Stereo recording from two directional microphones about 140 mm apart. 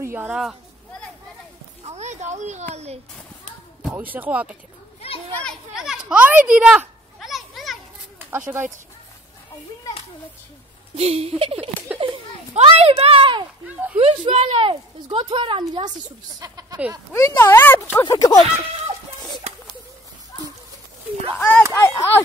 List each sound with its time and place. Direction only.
0.0 s a sound: 15° right (ahead or behind)
0.3 s speech: centre (ahead or behind)
1.8 s a sound: 50° right (ahead or behind)
3.9 s speech: 10° right (ahead or behind)
5.8 s children playing: 5° right (ahead or behind)
8.3 s speech: 10° right (ahead or behind)
11.0 s speech: 45° right (ahead or behind)
12.0 s a sound: 40° right (ahead or behind)
13.9 s speech: 45° right (ahead or behind)
16.3 s speech: 25° right (ahead or behind)
17.1 s speech: 20° left (ahead or behind)
21.3 s speech: 10° left (ahead or behind)